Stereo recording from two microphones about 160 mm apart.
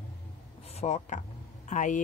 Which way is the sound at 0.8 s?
45° left (ahead or behind).